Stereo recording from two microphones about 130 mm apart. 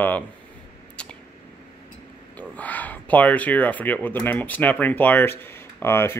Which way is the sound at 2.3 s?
10° left (ahead or behind).